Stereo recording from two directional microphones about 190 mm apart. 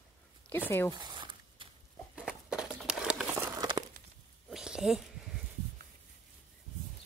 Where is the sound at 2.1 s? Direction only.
5° right (ahead or behind).